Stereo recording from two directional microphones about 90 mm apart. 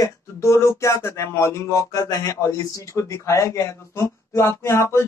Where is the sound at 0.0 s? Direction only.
35° left (ahead or behind).